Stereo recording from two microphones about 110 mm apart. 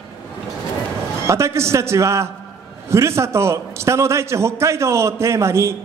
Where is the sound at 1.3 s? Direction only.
25° right (ahead or behind).